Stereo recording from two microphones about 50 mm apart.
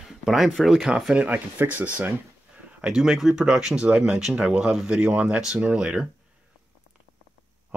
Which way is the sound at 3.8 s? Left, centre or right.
Right.